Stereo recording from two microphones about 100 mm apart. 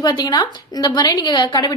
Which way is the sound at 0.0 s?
45° left (ahead or behind).